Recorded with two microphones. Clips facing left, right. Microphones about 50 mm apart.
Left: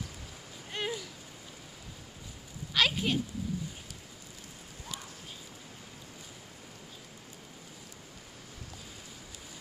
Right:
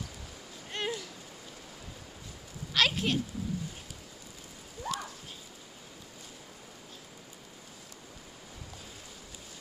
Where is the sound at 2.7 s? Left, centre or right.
Centre.